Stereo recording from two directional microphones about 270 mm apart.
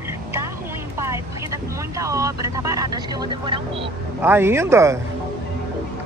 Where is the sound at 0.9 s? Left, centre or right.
Centre.